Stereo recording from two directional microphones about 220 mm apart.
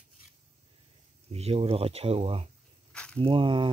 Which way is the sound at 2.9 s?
5° left (ahead or behind).